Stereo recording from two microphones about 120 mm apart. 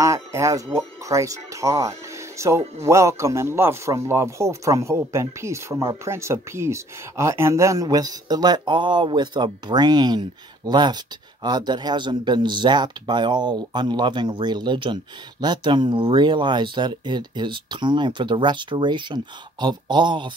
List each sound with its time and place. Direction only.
0.0 s speech: 25° right (ahead or behind); by 20.2 s 40° right (ahead or behind)